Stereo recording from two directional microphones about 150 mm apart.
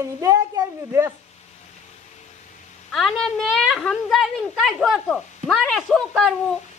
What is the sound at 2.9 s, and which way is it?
A woman's voice, centre (ahead or behind).